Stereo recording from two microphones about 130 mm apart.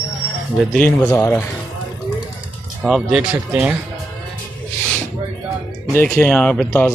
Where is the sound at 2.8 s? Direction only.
5° right (ahead or behind).